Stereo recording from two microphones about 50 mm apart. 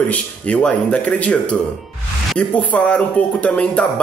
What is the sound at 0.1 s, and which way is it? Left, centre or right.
Speech, left.